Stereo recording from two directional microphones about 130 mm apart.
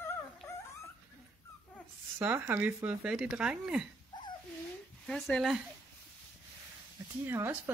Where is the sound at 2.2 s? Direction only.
15° right (ahead or behind).